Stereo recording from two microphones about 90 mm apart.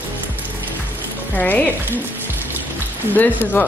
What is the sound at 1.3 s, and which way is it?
Speech, 20° left (ahead or behind).